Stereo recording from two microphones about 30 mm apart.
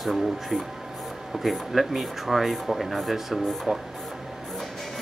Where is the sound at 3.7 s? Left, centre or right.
Right.